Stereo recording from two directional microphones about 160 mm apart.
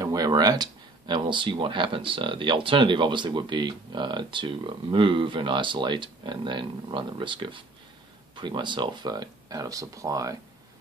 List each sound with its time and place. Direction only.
0.0 s speech: 25° right (ahead or behind)